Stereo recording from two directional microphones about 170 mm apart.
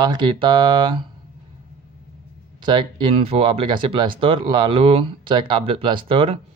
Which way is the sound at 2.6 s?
30° right (ahead or behind).